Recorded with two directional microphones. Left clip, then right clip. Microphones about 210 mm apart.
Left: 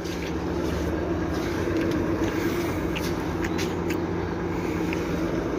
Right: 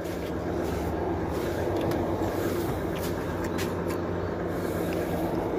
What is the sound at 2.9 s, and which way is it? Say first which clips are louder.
Vehicle: left 2 dB; 10° right (ahead or behind).